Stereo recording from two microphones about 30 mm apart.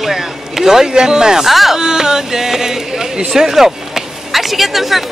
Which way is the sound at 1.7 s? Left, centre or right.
Right.